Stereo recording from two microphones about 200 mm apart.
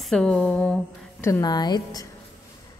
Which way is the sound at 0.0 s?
5° left (ahead or behind).